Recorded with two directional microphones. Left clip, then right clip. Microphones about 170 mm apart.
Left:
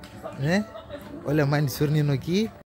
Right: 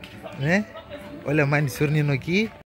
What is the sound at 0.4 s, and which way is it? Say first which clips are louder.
Speech: right 3 dB; centre (ahead or behind).